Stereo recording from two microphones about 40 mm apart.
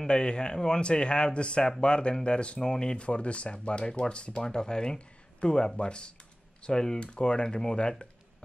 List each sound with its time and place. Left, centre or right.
0.0 s speech: left